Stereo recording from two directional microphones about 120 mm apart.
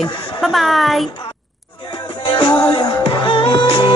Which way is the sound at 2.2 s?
40° left (ahead or behind).